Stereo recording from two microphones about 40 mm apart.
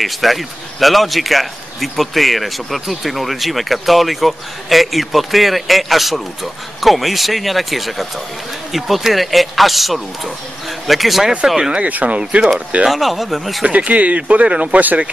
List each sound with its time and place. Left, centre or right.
0.0 s speech: centre
11.9 s speech: right
12.2 s speech: right
12.8 s speech: centre
13.7 s speech: right